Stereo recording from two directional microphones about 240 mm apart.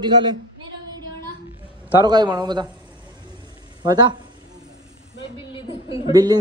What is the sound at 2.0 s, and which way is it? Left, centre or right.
Speech, centre.